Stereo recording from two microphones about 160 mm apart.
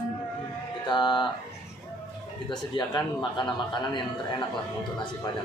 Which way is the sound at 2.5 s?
30° left (ahead or behind).